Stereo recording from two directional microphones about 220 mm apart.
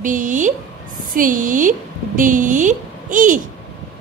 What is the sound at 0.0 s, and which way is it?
A woman's voice, 35° right (ahead or behind).